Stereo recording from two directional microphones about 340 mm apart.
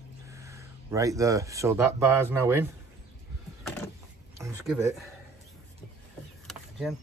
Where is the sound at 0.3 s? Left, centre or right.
Centre.